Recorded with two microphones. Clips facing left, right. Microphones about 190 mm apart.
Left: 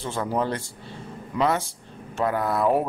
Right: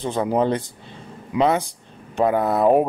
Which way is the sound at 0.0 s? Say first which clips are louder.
Right 6 dB; 20° right (ahead or behind).